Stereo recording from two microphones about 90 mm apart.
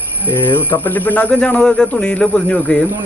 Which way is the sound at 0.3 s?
20° left (ahead or behind).